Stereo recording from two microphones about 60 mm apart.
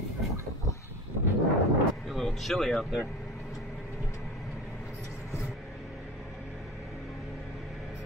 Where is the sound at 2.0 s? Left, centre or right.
Centre.